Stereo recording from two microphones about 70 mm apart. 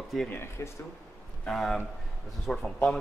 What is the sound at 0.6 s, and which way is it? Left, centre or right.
Speech, left.